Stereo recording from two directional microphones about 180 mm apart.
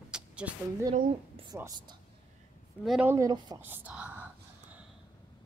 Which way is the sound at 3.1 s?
20° right (ahead or behind).